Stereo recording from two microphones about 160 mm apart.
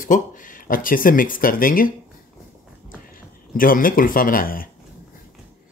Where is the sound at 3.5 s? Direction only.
60° left (ahead or behind).